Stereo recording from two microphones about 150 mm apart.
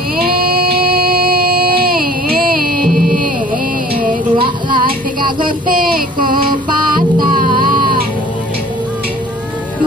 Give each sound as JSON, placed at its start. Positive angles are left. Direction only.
{"t": 0.2, "sound": "a sound", "side_deg": -90}
{"t": 3.9, "sound": "music", "side_deg": -70}
{"t": 4.4, "sound": "music", "side_deg": -30}
{"t": 5.4, "sound": "child singing", "side_deg": -70}
{"t": 7.3, "sound": "music", "side_deg": -70}